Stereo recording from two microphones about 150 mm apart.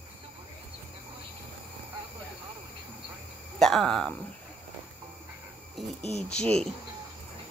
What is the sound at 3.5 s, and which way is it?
Speech, 5° left (ahead or behind).